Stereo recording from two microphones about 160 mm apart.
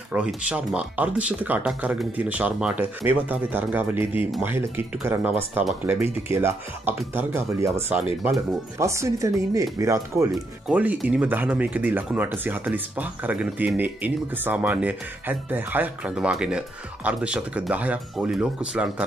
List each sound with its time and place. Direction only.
0.1 s speech: 5° right (ahead or behind)
8.7 s speech: 15° right (ahead or behind)